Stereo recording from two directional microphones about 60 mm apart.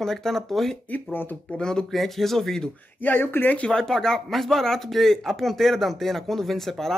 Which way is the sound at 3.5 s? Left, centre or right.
Centre.